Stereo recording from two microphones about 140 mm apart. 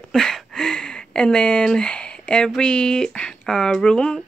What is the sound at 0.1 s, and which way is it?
Speech, 5° left (ahead or behind).